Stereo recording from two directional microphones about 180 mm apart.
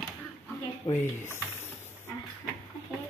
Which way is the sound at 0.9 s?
15° left (ahead or behind).